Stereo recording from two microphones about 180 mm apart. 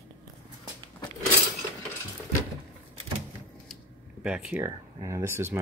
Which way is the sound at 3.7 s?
5° right (ahead or behind).